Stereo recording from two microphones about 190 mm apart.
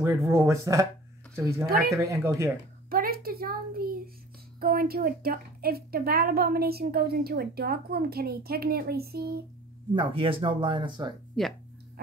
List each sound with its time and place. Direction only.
0.0 s speech: 15° right (ahead or behind)
2.9 s a woman's voice: 50° right (ahead or behind)
9.9 s speech: 30° right (ahead or behind)
11.4 s speech: centre (ahead or behind)